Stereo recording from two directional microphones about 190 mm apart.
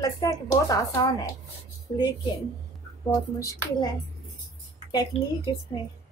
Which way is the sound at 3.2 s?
15° left (ahead or behind).